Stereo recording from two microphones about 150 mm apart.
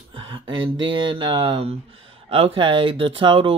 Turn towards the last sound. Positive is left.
turn(degrees=-35)  # may be behind; listen again after turning